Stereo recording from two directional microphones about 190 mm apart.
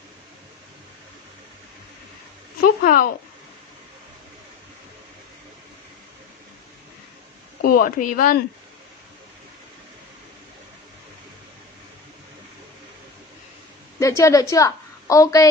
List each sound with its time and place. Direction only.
2.6 s speech: 50° left (ahead or behind)
7.6 s speech: 50° left (ahead or behind)
13.9 s a woman's voice: 15° left (ahead or behind)